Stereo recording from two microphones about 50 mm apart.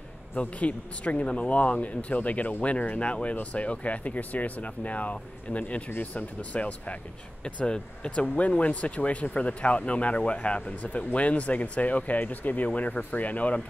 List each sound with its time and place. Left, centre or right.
0.4 s speech: left